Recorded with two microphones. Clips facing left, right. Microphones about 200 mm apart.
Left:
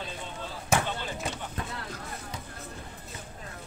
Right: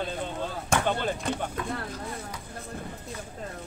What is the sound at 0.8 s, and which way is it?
Basketball bounce, 55° right (ahead or behind).